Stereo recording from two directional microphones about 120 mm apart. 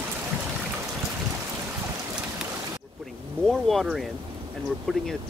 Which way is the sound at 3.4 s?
Centre (ahead or behind).